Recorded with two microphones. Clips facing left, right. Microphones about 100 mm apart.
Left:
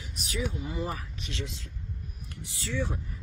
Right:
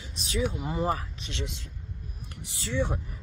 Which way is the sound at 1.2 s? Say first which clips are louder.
Right 1 dB; 25° right (ahead or behind).